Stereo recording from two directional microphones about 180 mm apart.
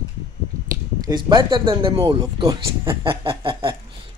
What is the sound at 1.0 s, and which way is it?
Speech, 20° right (ahead or behind).